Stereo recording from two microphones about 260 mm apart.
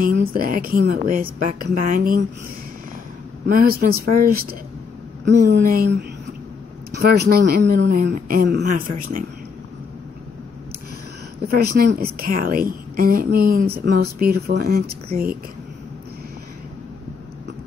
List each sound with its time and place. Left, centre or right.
0.0 s a woman's voice: right
3.4 s a woman's voice: right
11.4 s a woman's voice: right